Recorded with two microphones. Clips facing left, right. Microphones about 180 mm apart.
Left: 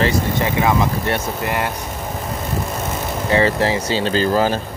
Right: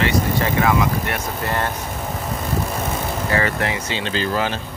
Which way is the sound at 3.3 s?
25° left (ahead or behind).